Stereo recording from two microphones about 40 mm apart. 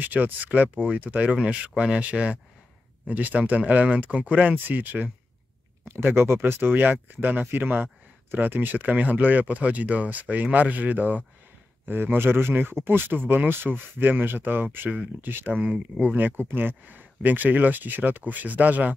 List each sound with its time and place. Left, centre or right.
0.0 s speech: right
1.4 s speech: right
5.9 s speech: right
11.9 s speech: right
12.8 s speech: right